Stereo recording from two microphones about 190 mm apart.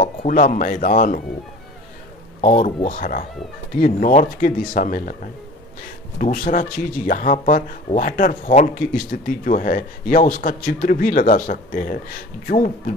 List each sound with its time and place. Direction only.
0.0 s speech: 45° left (ahead or behind)
2.4 s speech: 45° left (ahead or behind)